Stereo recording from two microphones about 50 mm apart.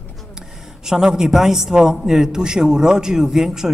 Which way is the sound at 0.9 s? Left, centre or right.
Centre.